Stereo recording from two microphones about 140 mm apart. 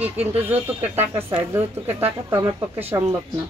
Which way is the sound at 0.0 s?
10° right (ahead or behind).